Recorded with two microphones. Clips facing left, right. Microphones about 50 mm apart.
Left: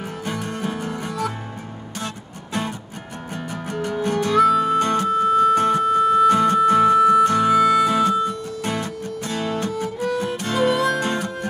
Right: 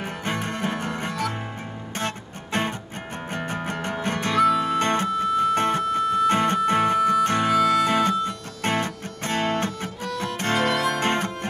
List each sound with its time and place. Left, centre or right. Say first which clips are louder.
0.2 s music: even; right
4.4 s music: left 3 dB; centre
4.7 s music: left 4 dB; right
7.2 s harmonica: left 4 dB; right
7.5 s music: left 2 dB; centre
7.8 s music: left 3 dB; right
10.0 s music: left 5 dB; centre
10.3 s music: even; right